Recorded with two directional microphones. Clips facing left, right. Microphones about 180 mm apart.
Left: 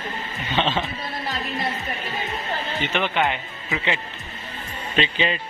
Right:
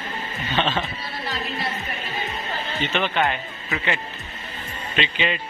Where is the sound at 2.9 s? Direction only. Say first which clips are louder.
Even; 15° left (ahead or behind).